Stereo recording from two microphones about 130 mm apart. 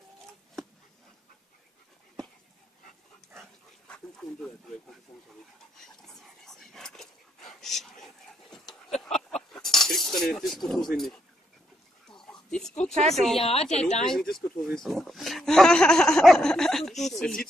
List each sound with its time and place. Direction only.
3.8 s dog: 5° left (ahead or behind)
5.8 s whispering: 5° left (ahead or behind)
9.1 s a sound: 5° left (ahead or behind)
12.2 s a sound: 5° left (ahead or behind)
13.1 s speech: centre (ahead or behind)
13.4 s a woman's voice: 50° left (ahead or behind)
14.0 s speech: 5° left (ahead or behind)